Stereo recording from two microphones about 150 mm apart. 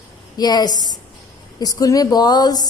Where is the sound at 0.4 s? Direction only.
30° left (ahead or behind).